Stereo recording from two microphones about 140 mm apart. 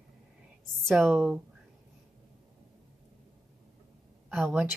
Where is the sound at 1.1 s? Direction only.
10° right (ahead or behind).